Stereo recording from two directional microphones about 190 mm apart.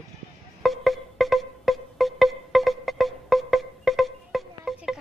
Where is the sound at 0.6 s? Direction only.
Centre (ahead or behind).